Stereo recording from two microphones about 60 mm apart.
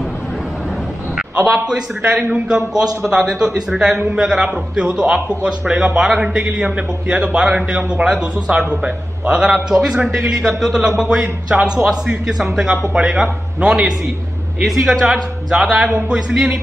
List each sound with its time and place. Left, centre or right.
2.3 s a man's voice: centre